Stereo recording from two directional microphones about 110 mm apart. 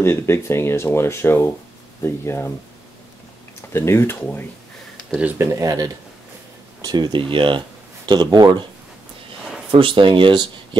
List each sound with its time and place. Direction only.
0.0 s speech: 25° left (ahead or behind)
3.7 s speech: 25° left (ahead or behind)
5.4 s speech: 30° right (ahead or behind)
9.7 s speech: 50° right (ahead or behind)